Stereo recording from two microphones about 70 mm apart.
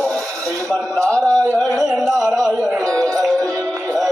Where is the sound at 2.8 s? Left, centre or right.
Centre.